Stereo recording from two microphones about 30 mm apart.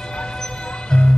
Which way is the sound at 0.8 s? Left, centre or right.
Left.